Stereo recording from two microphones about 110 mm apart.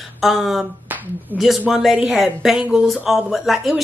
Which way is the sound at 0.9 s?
15° right (ahead or behind).